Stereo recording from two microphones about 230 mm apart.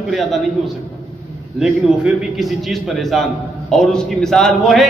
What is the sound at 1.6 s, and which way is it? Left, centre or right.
A man's voice, centre.